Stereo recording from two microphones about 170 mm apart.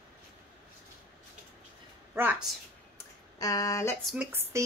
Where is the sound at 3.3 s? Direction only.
20° left (ahead or behind).